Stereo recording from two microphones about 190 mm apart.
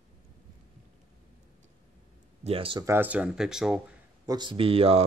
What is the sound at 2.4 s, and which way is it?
Speech, 30° right (ahead or behind).